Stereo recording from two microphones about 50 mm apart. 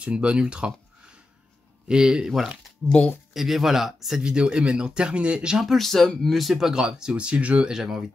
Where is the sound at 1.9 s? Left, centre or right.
Centre.